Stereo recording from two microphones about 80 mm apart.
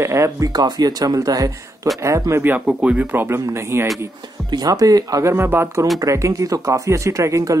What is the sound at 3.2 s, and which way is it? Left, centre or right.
Speech, right.